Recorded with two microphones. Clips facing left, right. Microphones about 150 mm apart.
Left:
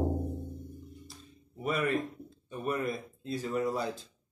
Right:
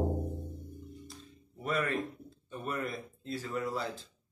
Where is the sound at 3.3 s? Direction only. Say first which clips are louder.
Left 4 dB; 20° left (ahead or behind).